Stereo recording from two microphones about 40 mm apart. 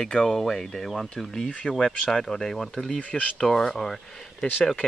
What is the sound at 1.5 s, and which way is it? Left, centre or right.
Speech, left.